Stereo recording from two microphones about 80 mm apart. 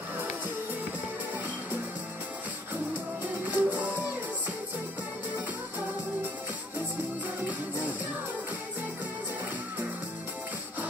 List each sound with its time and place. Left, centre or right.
3.4 s music: right